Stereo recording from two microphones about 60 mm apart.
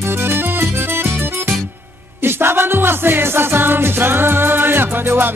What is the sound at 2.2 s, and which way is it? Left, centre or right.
Music, right.